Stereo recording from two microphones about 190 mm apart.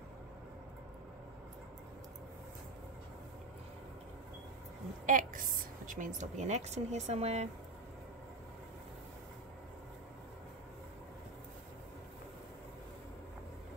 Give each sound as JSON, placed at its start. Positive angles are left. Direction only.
{"t": 5.0, "sound": "a woman's voice", "side_deg": -45}